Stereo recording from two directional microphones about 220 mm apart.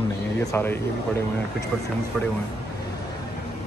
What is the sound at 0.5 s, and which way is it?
Speech, 10° left (ahead or behind).